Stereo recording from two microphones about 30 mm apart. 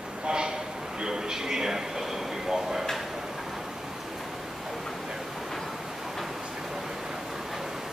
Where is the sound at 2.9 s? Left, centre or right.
Centre.